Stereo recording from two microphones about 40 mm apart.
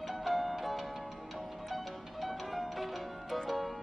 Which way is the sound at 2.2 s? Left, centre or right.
Centre.